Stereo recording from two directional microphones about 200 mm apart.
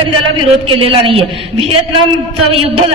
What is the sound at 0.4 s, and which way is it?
A man's voice, 30° right (ahead or behind).